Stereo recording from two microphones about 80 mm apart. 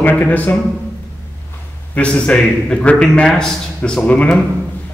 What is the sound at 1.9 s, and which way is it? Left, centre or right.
A man's voice, centre.